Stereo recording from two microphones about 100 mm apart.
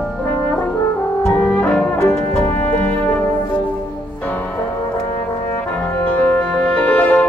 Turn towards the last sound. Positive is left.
turn(degrees=15)  # may be behind; listen again after turning